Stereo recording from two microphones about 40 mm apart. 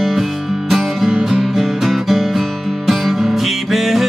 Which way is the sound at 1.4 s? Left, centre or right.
Centre.